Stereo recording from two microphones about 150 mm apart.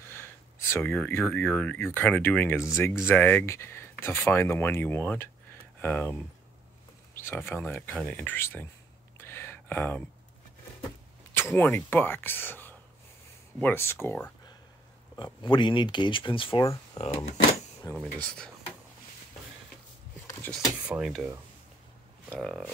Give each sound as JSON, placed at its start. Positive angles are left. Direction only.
{"t": 0.1, "sound": "speech", "side_deg": 15}
{"t": 7.2, "sound": "speech", "side_deg": 15}
{"t": 9.2, "sound": "a sound", "side_deg": 15}
{"t": 11.3, "sound": "speech", "side_deg": 15}
{"t": 15.1, "sound": "speech", "side_deg": 30}
{"t": 17.0, "sound": "speech", "side_deg": 50}
{"t": 18.0, "sound": "speech", "side_deg": 5}
{"t": 20.6, "sound": "speech", "side_deg": -5}
{"t": 22.3, "sound": "speech", "side_deg": 5}